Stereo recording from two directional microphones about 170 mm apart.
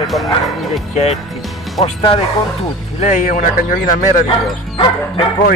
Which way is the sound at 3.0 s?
45° left (ahead or behind).